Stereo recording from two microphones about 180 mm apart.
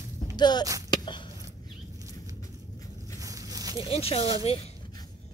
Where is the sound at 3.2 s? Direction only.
20° right (ahead or behind).